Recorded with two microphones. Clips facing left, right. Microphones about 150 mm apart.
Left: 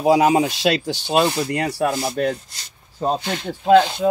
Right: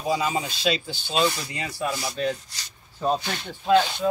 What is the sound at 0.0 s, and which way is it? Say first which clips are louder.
Speech: left 10 dB; 80° left.